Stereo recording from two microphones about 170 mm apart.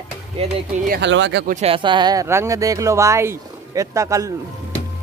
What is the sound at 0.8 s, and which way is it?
Speech, 80° right.